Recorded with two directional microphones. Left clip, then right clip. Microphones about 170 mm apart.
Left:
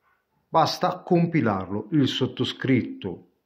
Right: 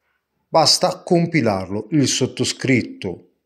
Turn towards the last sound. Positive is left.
turn(degrees=-35)  # may be behind; listen again after turning